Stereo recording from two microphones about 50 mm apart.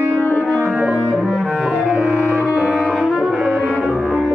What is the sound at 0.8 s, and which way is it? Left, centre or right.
Cello, centre.